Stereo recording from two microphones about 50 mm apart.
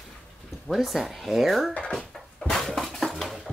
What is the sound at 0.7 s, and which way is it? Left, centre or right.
Speech, centre.